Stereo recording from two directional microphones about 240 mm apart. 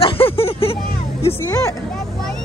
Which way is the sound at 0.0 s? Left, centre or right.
Left.